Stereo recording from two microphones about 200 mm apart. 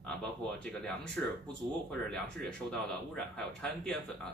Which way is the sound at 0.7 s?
5° left (ahead or behind).